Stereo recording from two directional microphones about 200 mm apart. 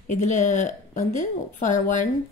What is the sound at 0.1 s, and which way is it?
A woman's voice, 35° left (ahead or behind).